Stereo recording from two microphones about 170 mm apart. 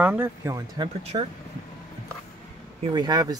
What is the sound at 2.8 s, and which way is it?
Speech, 25° right (ahead or behind).